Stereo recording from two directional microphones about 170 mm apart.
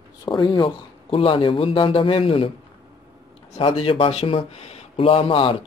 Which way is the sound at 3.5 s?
35° left (ahead or behind).